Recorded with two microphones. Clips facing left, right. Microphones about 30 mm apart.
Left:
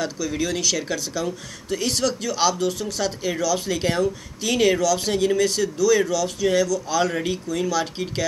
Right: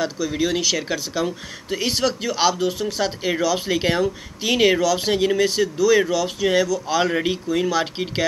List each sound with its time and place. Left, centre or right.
0.0 s speech: centre